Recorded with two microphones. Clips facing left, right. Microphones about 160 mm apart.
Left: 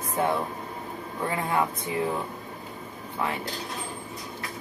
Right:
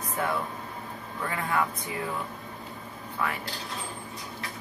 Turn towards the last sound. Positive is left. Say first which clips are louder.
# left 2 dB
turn(degrees=25)  # may be behind; listen again after turning